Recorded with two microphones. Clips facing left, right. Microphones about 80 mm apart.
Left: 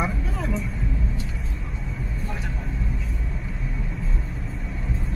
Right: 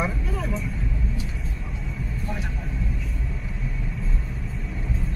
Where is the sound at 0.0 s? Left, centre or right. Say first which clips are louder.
Even; centre.